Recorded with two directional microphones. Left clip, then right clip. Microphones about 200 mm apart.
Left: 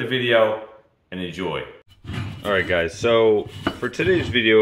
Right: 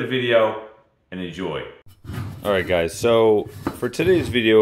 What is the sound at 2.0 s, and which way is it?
Speech, 15° right (ahead or behind).